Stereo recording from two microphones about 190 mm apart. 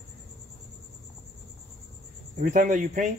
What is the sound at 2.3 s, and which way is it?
Speech, 40° right (ahead or behind).